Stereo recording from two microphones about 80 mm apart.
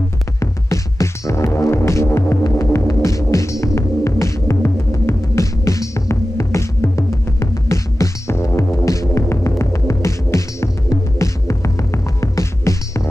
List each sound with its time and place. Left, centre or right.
0.4 s music: left
2.4 s throbbing: left